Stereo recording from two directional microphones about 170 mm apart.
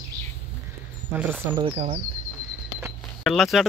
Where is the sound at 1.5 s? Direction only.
30° right (ahead or behind).